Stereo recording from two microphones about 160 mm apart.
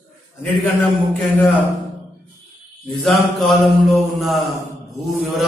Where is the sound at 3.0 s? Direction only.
Centre (ahead or behind).